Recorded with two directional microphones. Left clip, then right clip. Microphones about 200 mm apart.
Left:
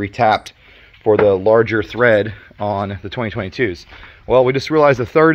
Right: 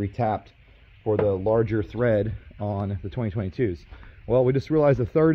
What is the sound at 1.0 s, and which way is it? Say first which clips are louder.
Speech: left 11 dB; 20° left (ahead or behind).